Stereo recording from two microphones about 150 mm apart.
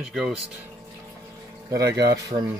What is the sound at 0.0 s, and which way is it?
Speech, centre (ahead or behind).